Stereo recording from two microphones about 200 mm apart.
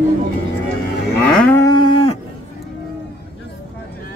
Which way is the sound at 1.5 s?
15° left (ahead or behind).